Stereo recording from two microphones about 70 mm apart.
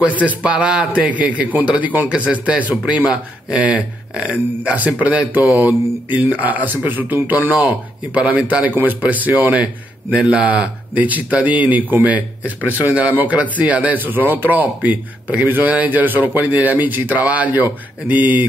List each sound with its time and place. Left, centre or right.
0.0 s a man's voice: right
12.4 s speech: left
12.9 s a man's voice: right